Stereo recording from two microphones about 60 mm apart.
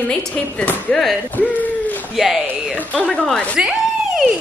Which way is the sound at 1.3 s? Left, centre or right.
Left.